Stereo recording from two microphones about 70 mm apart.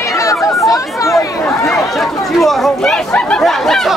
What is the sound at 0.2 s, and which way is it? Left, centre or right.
Chatter, left.